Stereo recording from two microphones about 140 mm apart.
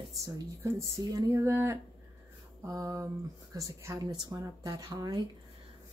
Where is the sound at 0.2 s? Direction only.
20° right (ahead or behind).